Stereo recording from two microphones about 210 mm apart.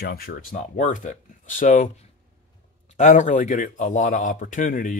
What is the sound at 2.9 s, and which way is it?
Speech, 35° left (ahead or behind).